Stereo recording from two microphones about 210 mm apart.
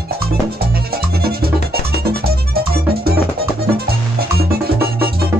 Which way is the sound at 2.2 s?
45° right (ahead or behind).